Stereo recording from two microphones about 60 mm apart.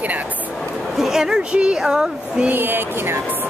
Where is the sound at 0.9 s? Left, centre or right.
Centre.